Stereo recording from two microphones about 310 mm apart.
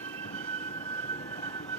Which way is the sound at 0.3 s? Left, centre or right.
Centre.